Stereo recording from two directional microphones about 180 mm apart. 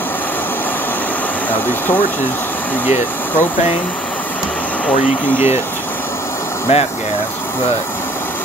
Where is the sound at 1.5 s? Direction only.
10° left (ahead or behind).